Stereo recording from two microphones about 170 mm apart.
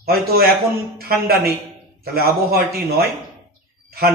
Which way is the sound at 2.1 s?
65° right (ahead or behind).